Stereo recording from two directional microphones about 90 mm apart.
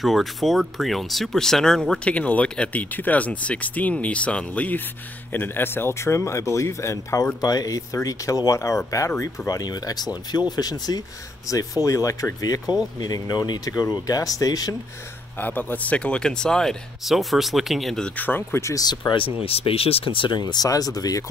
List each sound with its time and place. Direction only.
0.0 s speech: centre (ahead or behind); by 7.2 s 35° left (ahead or behind)
7.4 s speech: 45° left (ahead or behind)
15.4 s speech: 20° left (ahead or behind); by 18.1 s 5° left (ahead or behind)
18.1 s speech: 20° left (ahead or behind)
18.6 s speech: 35° left (ahead or behind)
18.9 s speech: 65° left (ahead or behind); by 21.2 s 45° left (ahead or behind)